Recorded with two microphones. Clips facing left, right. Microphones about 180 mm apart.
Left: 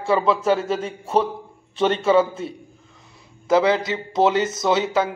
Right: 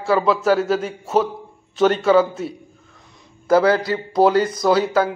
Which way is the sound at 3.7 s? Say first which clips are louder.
Right 2 dB; 20° left (ahead or behind).